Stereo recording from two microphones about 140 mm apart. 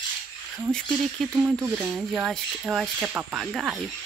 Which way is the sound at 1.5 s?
15° right (ahead or behind).